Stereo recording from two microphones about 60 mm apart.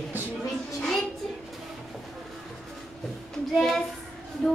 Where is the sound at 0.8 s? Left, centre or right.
Centre.